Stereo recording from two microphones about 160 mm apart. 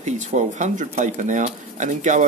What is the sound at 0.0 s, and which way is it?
Speech, 45° right (ahead or behind).